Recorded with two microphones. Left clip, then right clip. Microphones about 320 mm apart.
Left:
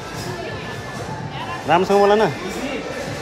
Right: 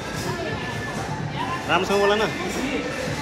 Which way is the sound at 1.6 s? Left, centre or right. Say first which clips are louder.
Left 6 dB; left.